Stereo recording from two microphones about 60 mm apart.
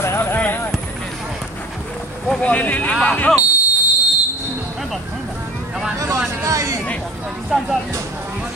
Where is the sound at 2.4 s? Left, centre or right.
Left.